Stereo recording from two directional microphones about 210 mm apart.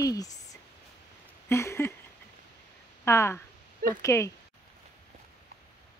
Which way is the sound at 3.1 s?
15° left (ahead or behind).